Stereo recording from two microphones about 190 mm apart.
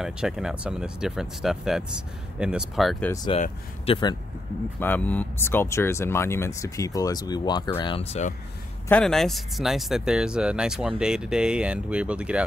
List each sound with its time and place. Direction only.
0.0 s speech: 5° right (ahead or behind)
3.8 s speech: 25° left (ahead or behind)
4.7 s speech: 10° left (ahead or behind); by 8.4 s 35° left (ahead or behind)
8.8 s speech: 5° left (ahead or behind)